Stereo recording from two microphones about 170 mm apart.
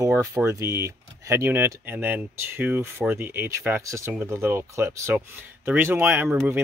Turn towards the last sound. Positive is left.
turn(degrees=-10)  # may be behind; listen again after turning